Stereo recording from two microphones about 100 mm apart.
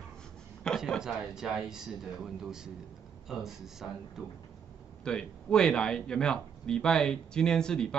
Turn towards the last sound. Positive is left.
turn(degrees=5)  # may be behind; listen again after turning